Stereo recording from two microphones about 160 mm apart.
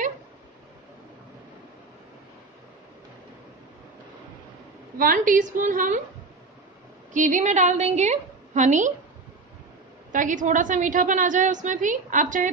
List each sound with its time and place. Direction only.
4.9 s a woman's voice: 60° right (ahead or behind)
7.2 s a woman's voice: 50° right (ahead or behind)
10.1 s a woman's voice: 55° right (ahead or behind)